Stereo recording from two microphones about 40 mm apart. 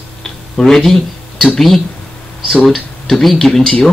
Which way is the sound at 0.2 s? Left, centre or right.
Centre.